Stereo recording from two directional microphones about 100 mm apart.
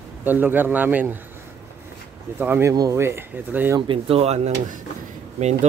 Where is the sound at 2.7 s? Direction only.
40° right (ahead or behind).